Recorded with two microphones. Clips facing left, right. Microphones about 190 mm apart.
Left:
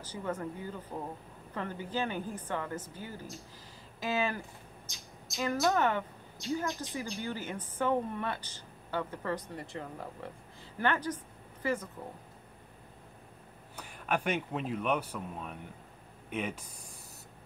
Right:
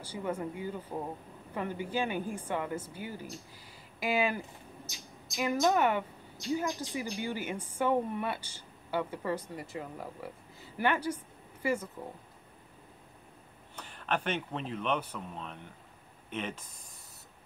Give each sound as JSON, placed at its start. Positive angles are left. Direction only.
{"t": 0.0, "sound": "a woman's voice", "side_deg": -10}
{"t": 5.4, "sound": "a woman's voice", "side_deg": -15}
{"t": 13.7, "sound": "speech", "side_deg": 10}